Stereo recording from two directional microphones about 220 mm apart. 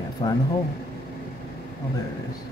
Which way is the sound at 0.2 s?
20° left (ahead or behind).